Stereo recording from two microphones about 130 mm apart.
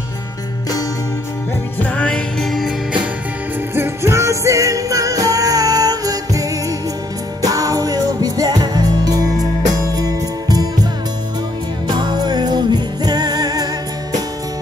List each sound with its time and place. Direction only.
1.8 s music: 10° left (ahead or behind)
3.7 s music: 20° right (ahead or behind)
11.9 s music: 35° right (ahead or behind)